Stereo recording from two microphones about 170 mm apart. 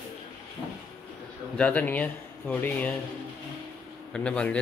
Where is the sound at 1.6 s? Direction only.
10° left (ahead or behind).